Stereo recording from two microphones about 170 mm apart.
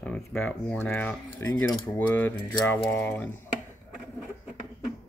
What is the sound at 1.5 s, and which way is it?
Speech, 25° left (ahead or behind).